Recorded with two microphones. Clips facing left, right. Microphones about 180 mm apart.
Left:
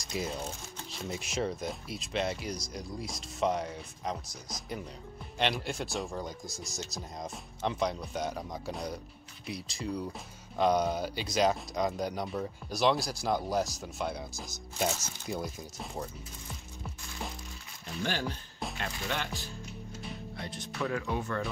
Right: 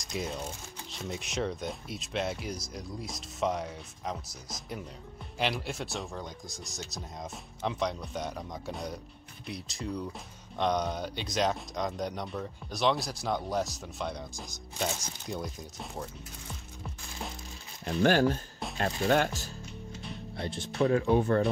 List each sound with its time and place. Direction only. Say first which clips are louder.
0.0 s speech: even; centre (ahead or behind)
17.8 s speech: right 10 dB; 50° right (ahead or behind)
18.8 s speech: right 11 dB; 40° right (ahead or behind)
20.3 s speech: right 8 dB; 30° right (ahead or behind)